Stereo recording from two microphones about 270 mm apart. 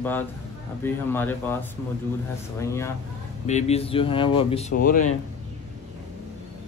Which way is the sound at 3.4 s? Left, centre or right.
Left.